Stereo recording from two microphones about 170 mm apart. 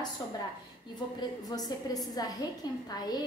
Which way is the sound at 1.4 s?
20° left (ahead or behind).